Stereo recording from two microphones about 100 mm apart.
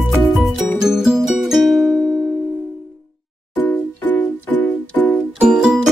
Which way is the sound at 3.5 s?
15° left (ahead or behind).